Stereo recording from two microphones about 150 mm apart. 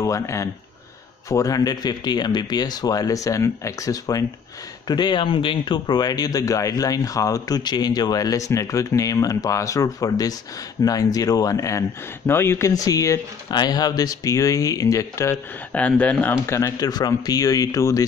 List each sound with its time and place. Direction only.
0.0 s speech: 20° left (ahead or behind)